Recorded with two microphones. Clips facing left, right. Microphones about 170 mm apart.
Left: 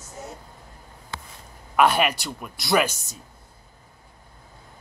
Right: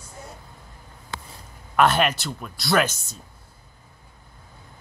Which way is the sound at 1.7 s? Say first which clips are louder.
Even; 10° left (ahead or behind).